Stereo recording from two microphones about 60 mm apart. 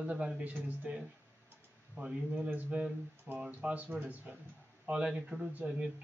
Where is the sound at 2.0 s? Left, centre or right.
Centre.